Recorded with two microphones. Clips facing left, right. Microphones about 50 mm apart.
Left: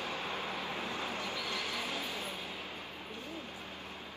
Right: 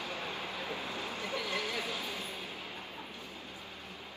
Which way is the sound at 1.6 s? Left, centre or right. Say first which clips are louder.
Right 1 dB; left.